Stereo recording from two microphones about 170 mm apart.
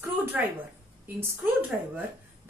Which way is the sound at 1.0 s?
10° right (ahead or behind).